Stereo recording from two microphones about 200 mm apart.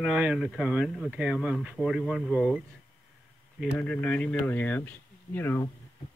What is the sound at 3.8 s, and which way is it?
Speech, 5° left (ahead or behind).